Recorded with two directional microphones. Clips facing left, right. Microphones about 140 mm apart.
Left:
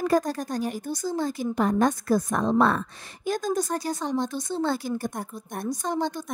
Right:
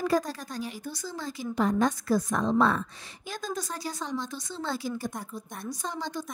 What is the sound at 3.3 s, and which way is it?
A woman's voice, 45° left (ahead or behind).